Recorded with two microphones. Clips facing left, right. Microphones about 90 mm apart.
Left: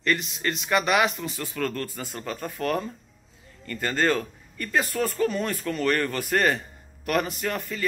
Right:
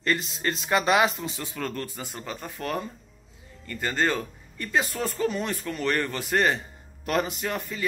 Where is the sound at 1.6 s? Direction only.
20° right (ahead or behind).